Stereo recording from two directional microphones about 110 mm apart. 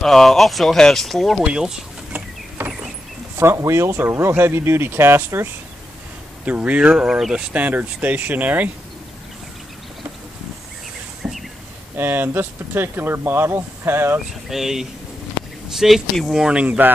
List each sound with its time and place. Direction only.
0.0 s speech: 5° left (ahead or behind)
3.3 s speech: 25° right (ahead or behind)
11.2 s a sound: 15° right (ahead or behind)
12.0 s speech: 20° right (ahead or behind)
14.5 s speech: 5° right (ahead or behind)